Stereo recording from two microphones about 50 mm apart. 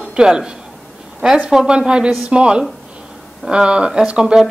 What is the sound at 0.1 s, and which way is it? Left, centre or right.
A woman's voice, centre.